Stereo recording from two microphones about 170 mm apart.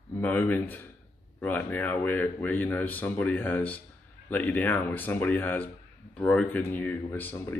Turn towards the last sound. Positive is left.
turn(degrees=10)  # may be behind; listen again after turning